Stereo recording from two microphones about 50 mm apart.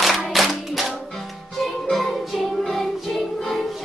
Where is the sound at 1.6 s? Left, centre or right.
Centre.